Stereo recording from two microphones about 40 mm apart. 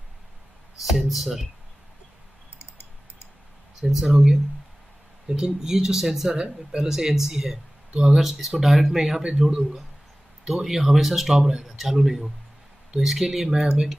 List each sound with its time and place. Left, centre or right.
0.8 s speech: centre
2.6 s typing: left
3.9 s speech: centre
5.3 s speech: centre
6.3 s speech: right
6.9 s speech: centre
10.5 s speech: centre